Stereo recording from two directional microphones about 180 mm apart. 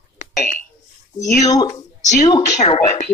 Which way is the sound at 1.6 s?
40° left (ahead or behind).